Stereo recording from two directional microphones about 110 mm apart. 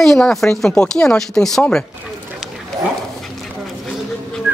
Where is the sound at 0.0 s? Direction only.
5° left (ahead or behind).